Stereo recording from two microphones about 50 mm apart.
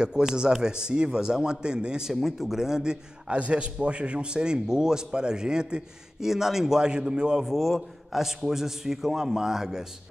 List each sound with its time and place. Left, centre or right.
0.0 s a man's voice: centre